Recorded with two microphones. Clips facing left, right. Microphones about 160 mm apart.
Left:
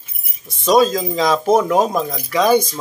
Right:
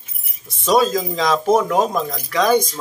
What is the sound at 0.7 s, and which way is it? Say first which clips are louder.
Speech: left 2 dB; centre (ahead or behind).